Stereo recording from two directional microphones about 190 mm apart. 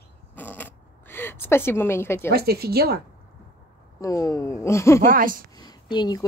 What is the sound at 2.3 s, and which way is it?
Speech, 55° right (ahead or behind).